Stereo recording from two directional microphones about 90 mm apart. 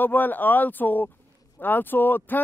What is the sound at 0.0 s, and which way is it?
Speech, 20° left (ahead or behind).